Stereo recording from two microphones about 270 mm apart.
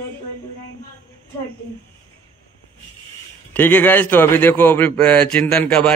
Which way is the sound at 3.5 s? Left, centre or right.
Centre.